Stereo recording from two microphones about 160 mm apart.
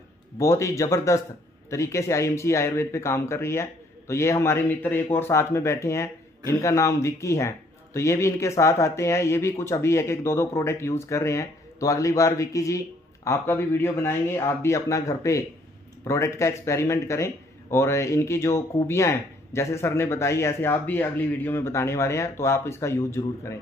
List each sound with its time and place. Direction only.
0.4 s a man's voice: 20° left (ahead or behind)